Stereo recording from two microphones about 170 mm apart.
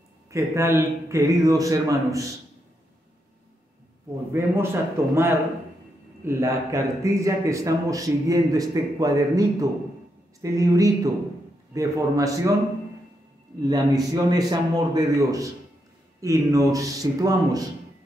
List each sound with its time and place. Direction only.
0.3 s speech: 15° right (ahead or behind)
4.3 s a man's voice: 15° right (ahead or behind)
13.6 s speech: 20° right (ahead or behind)